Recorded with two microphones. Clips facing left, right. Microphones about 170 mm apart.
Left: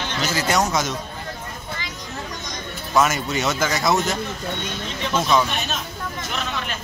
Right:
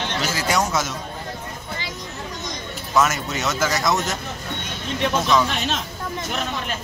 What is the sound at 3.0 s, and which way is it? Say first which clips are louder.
Speech: left 1 dB; centre (ahead or behind).